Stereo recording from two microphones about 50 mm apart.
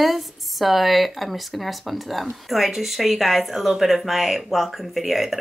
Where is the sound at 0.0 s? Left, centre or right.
Centre.